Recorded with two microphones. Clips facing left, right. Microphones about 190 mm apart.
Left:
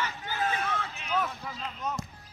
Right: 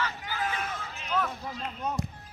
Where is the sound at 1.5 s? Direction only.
35° right (ahead or behind).